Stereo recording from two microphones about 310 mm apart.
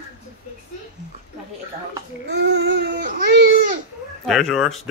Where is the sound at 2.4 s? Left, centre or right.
Right.